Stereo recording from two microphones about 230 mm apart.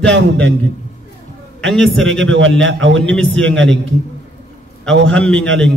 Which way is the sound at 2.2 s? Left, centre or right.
Right.